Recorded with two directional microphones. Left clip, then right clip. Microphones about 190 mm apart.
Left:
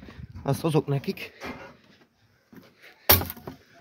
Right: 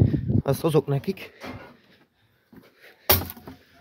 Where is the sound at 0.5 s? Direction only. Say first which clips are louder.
Right 3 dB; 30° right (ahead or behind).